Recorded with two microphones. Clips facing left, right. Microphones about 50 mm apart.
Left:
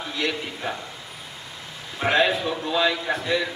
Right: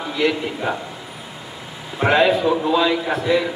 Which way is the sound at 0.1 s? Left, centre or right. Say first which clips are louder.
Right 8 dB; centre.